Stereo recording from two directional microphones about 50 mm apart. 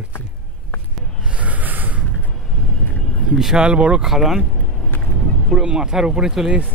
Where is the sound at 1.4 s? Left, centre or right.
Right.